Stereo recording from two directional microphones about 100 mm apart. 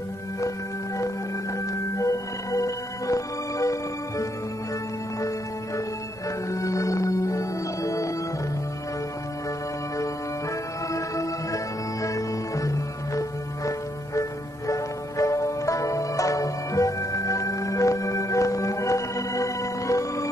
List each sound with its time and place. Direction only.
1.7 s music: 35° left (ahead or behind)
6.5 s music: 30° left (ahead or behind)
10.9 s music: 30° left (ahead or behind)
14.7 s music: 35° left (ahead or behind)